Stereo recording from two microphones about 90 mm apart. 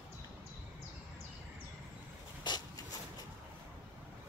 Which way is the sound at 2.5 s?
55° left (ahead or behind).